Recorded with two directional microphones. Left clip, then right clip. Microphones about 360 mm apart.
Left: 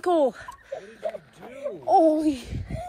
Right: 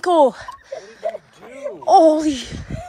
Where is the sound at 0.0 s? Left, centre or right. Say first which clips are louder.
Right 8 dB; centre.